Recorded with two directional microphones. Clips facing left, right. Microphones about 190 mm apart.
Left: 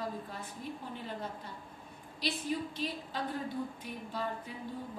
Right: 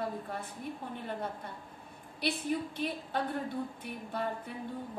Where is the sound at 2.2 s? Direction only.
60° right (ahead or behind).